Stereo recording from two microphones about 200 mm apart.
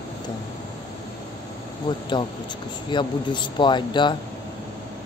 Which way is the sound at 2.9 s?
25° left (ahead or behind).